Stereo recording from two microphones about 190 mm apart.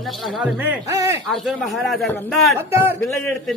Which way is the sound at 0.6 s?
15° right (ahead or behind).